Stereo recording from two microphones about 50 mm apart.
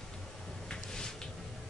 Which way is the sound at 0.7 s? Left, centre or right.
Centre.